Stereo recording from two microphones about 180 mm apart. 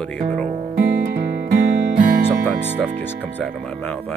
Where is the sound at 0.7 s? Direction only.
60° right (ahead or behind).